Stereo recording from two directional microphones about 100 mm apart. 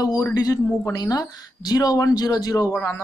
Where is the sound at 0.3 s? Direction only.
40° left (ahead or behind).